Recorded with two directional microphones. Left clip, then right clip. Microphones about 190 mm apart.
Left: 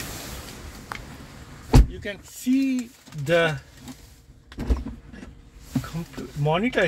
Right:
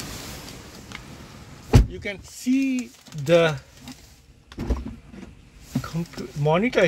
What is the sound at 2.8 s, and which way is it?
Speech, 25° right (ahead or behind).